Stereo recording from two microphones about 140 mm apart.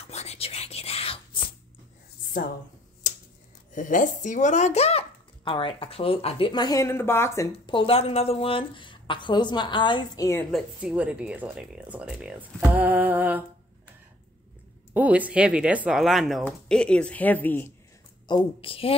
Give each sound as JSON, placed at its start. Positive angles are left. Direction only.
{"t": 0.0, "sound": "whispering", "side_deg": 50}
{"t": 3.0, "sound": "a sound", "side_deg": 60}
{"t": 3.7, "sound": "speech", "side_deg": 65}
{"t": 5.4, "sound": "a woman's voice", "side_deg": 40}
{"t": 7.5, "sound": "a woman's voice", "side_deg": 40}
{"t": 10.5, "sound": "speech", "side_deg": -5}
{"t": 15.0, "sound": "speech", "side_deg": -10}
{"t": 18.2, "sound": "a woman's voice", "side_deg": 35}